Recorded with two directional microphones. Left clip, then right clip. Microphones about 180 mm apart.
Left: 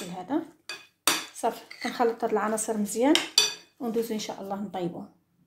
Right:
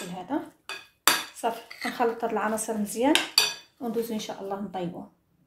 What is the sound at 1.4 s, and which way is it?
Speech, 35° left (ahead or behind).